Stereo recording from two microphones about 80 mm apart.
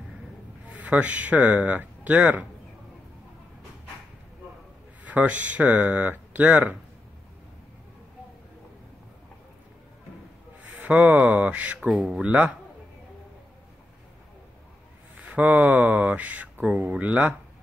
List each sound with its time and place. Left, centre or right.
0.7 s speech: centre
5.0 s speech: centre
10.6 s speech: centre
15.1 s speech: centre